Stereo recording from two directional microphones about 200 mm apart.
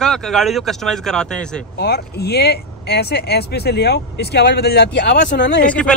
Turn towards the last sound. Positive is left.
turn(degrees=5)  # may be behind; listen again after turning